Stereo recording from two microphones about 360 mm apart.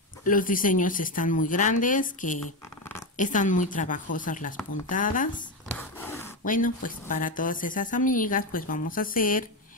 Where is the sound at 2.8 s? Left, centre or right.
Centre.